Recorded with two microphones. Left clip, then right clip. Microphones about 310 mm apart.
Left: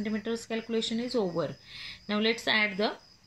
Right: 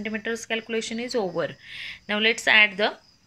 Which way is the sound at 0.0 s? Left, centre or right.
Right.